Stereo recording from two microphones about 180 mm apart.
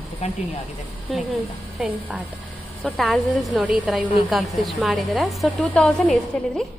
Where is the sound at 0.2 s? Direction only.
35° left (ahead or behind).